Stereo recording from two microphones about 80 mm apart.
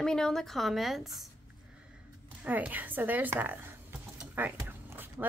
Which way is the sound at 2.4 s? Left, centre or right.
Right.